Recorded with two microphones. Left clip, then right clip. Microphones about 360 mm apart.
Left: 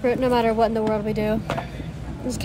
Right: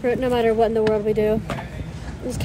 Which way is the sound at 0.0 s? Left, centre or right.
Centre.